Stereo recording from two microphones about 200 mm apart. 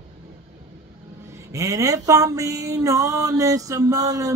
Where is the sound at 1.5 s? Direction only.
15° right (ahead or behind).